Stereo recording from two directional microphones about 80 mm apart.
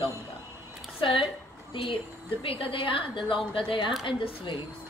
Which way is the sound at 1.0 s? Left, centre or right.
Left.